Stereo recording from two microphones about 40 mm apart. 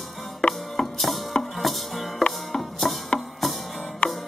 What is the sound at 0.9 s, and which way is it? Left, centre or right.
Music, centre.